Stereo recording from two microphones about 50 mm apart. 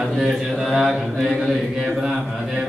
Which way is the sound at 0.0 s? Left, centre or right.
Centre.